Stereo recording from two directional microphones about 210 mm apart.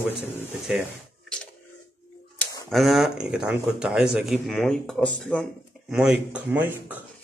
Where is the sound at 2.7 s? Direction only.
Centre (ahead or behind).